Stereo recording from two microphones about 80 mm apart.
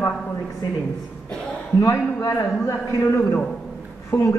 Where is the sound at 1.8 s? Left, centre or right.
Left.